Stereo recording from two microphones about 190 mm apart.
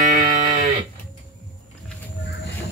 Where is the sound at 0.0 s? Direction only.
45° right (ahead or behind).